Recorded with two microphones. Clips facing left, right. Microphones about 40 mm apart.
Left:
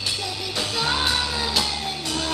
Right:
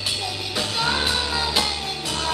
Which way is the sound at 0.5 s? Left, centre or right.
Centre.